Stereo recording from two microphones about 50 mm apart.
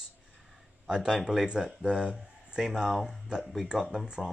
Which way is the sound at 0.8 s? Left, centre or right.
Centre.